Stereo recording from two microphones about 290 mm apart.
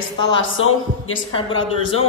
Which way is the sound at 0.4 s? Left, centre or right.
Left.